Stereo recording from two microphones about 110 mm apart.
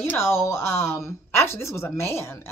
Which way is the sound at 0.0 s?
20° left (ahead or behind).